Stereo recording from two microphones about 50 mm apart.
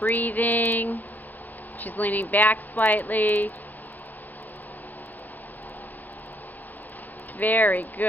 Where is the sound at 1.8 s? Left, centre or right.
Left.